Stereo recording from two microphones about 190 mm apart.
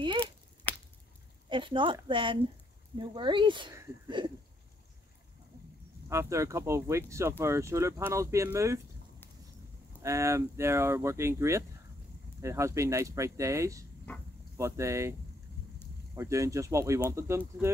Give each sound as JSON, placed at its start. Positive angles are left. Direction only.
{"t": 0.7, "sound": "squish", "side_deg": 10}
{"t": 1.5, "sound": "speech", "side_deg": -25}
{"t": 6.0, "sound": "speech", "side_deg": -15}
{"t": 10.0, "sound": "speech", "side_deg": -15}
{"t": 16.2, "sound": "speech", "side_deg": -15}